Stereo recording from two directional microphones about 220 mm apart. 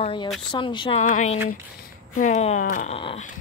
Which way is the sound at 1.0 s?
35° left (ahead or behind).